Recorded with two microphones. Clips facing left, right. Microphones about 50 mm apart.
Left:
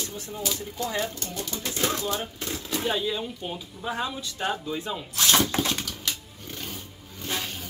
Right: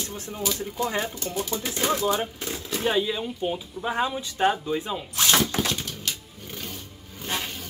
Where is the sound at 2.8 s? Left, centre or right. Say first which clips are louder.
Right 4 dB; centre.